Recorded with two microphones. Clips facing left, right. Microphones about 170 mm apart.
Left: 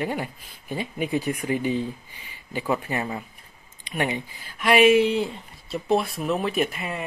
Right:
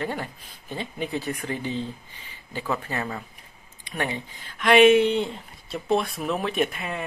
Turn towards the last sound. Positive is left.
turn(degrees=0)  # may be behind; listen again after turning